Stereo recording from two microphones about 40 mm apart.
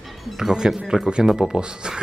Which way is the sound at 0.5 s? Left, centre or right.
Centre.